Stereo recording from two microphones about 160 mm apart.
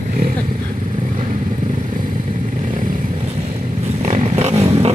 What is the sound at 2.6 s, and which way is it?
Vehicle, 55° right (ahead or behind).